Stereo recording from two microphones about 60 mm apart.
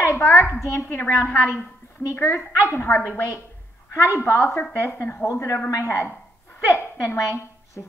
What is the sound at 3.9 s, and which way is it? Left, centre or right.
Speech, left.